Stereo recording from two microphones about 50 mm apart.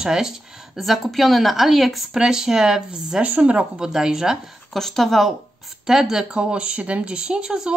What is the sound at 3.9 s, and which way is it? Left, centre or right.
Speech, centre.